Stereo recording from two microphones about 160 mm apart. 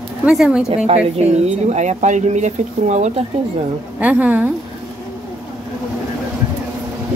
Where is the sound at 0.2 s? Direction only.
5° right (ahead or behind).